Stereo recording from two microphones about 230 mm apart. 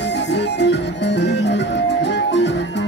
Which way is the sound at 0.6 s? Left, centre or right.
Left.